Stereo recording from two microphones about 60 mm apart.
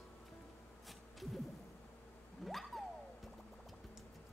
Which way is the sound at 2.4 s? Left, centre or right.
Centre.